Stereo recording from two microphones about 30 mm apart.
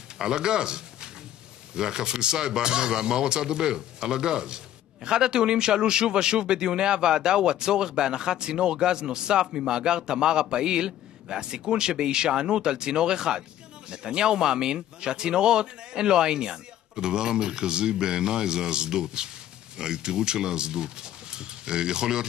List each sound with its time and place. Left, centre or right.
0.2 s speech: right